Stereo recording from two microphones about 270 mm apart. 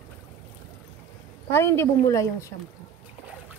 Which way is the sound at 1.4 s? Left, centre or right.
Centre.